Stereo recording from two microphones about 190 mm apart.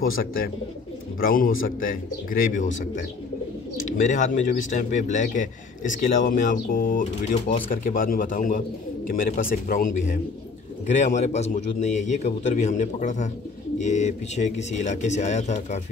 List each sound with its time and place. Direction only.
0.2 s a man's voice: 50° left (ahead or behind)